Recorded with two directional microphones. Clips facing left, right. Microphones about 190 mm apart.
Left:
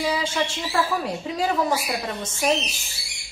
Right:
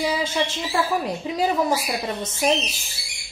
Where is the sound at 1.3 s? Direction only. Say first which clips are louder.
Right 2 dB; 20° right (ahead or behind).